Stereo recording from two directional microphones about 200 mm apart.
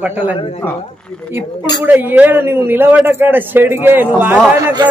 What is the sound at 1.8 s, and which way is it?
A man's voice, 10° right (ahead or behind).